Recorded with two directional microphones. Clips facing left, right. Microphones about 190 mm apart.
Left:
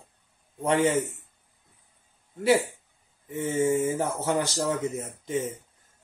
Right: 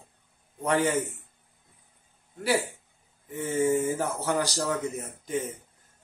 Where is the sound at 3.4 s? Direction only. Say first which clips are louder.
Left 1 dB; 20° left (ahead or behind).